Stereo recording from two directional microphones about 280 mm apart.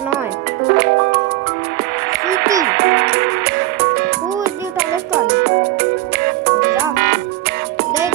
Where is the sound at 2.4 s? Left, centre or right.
Right.